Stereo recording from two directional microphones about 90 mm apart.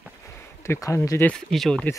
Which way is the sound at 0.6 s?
35° left (ahead or behind).